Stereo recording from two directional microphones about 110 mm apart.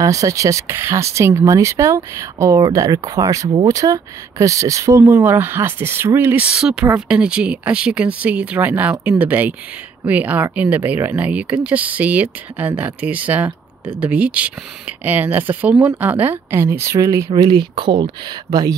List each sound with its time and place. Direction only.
0.0 s speech: 30° right (ahead or behind)
6.5 s speech: 10° right (ahead or behind); by 17.3 s 25° right (ahead or behind)
17.5 s speech: 50° right (ahead or behind)